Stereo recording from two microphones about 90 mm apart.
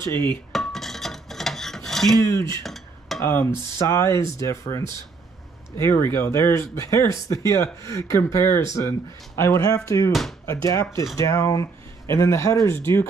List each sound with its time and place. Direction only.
0.5 s filing: 5° left (ahead or behind)
2.2 s speech: 35° left (ahead or behind)
2.6 s dishes: centre (ahead or behind)
3.3 s speech: 25° left (ahead or behind)